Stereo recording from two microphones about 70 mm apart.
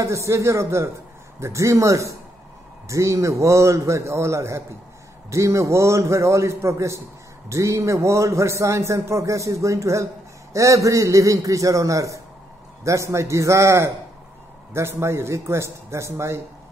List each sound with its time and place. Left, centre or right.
0.0 s a man's voice: right